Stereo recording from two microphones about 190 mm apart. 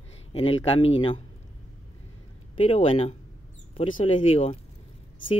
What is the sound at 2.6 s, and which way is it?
Speech, 30° left (ahead or behind).